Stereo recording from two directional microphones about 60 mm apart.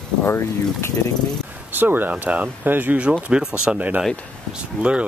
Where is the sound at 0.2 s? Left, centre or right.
Left.